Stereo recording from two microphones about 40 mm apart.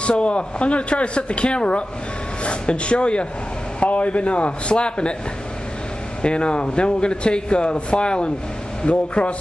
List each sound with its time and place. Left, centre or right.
0.0 s speech: left
6.2 s speech: left